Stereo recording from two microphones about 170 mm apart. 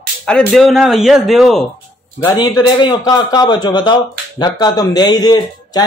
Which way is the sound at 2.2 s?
20° left (ahead or behind).